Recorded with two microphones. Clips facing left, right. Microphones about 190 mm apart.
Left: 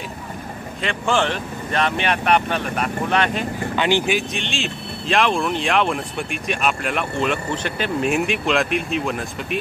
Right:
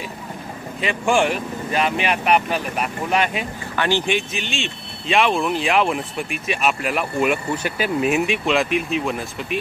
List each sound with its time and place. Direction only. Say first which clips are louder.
0.7 s speech: right 2 dB; 10° right (ahead or behind)
3.7 s speech: left 1 dB; 15° left (ahead or behind)
4.0 s speech: left 1 dB; centre (ahead or behind)